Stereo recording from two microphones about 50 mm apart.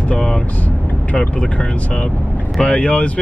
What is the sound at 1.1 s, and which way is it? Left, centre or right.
Speech, left.